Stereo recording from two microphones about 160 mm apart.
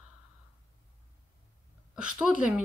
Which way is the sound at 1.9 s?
5° right (ahead or behind).